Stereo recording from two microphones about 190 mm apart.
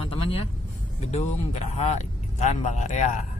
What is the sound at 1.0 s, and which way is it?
Speech, 35° left (ahead or behind).